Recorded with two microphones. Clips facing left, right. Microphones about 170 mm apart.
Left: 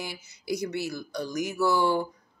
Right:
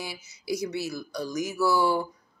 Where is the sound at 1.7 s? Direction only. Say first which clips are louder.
Right 1 dB; 10° right (ahead or behind).